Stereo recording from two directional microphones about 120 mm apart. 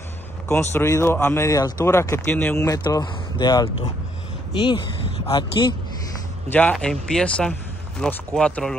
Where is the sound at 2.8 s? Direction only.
35° left (ahead or behind).